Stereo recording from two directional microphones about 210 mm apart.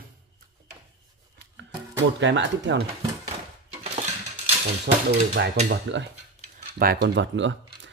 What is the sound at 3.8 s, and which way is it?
Dishes, 30° right (ahead or behind).